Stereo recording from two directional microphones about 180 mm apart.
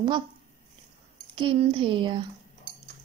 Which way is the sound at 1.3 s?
30° right (ahead or behind).